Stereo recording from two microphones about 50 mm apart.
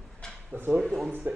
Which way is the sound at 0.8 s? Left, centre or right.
Centre.